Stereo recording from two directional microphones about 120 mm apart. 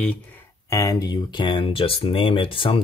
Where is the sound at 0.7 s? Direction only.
30° left (ahead or behind).